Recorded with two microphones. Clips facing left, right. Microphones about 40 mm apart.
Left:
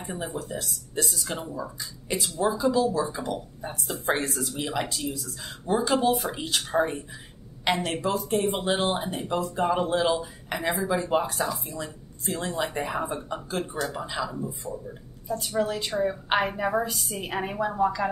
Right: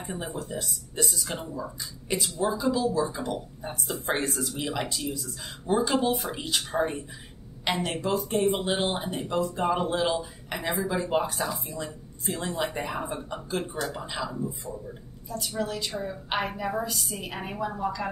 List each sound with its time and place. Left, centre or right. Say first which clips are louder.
0.0 s speech: left 1 dB; centre
7.6 s speech: left 2 dB; centre
15.2 s a woman's voice: left 4 dB; left